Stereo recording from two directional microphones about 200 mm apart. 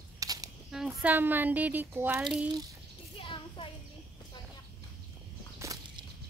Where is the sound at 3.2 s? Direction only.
25° left (ahead or behind).